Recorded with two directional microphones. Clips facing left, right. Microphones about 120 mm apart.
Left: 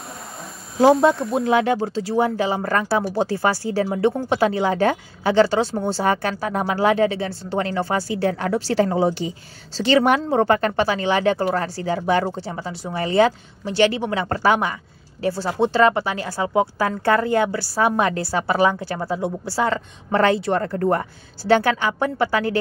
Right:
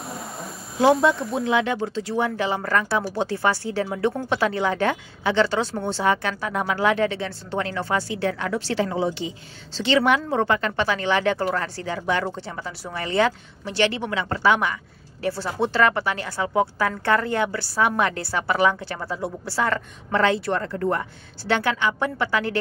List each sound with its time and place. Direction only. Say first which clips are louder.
1.0 s speech: left 3 dB; 40° left (ahead or behind)
20.5 s speech: left 4 dB; 40° left (ahead or behind)